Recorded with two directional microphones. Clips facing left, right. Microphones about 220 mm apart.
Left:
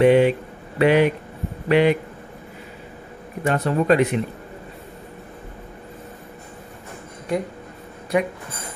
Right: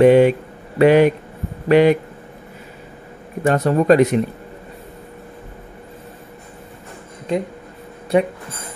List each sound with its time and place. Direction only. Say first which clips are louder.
0.0 s a man's voice: right 4 dB; 45° right (ahead or behind)
3.4 s speech: right 4 dB; 45° right (ahead or behind)
8.1 s speech: right 5 dB; 30° right (ahead or behind)